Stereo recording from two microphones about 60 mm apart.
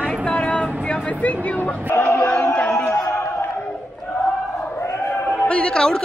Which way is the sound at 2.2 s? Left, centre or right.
Left.